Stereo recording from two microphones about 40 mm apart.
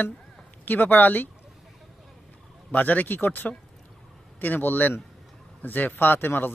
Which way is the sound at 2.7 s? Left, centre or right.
Left.